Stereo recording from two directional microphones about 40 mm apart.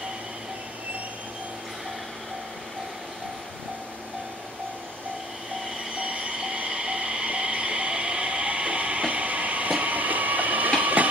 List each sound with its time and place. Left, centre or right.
5.9 s train: right